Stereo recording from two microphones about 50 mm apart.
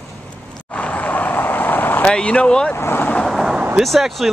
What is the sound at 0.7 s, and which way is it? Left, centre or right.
Vehicle, left.